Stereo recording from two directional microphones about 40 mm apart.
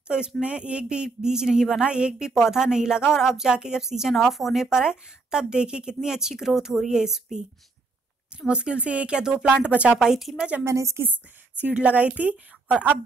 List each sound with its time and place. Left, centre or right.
0.4 s a woman's voice: right; by 1.8 s centre
1.8 s speech: right
2.1 s a woman's voice: centre
4.1 s a woman's voice: centre
8.5 s speech: right
9.7 s speech: right
9.9 s a woman's voice: centre
11.0 s a woman's voice: right
11.7 s speech: right